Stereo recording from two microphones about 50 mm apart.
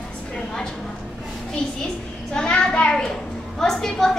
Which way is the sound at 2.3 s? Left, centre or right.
Centre.